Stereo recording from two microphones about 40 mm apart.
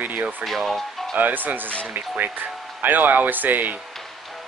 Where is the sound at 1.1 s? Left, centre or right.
Right.